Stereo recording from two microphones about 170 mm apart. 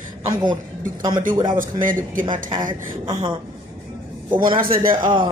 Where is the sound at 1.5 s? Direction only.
50° right (ahead or behind).